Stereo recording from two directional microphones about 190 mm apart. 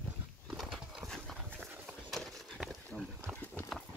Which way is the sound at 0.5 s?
Centre (ahead or behind).